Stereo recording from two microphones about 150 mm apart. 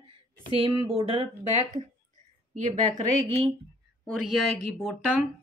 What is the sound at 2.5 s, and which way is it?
A woman's voice, 60° right (ahead or behind).